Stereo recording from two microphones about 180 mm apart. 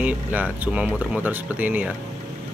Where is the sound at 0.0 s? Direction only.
10° right (ahead or behind).